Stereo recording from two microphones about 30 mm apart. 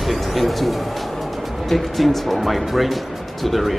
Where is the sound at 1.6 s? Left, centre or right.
Centre.